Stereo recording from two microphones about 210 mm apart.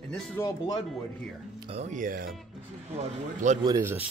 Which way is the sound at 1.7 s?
35° right (ahead or behind).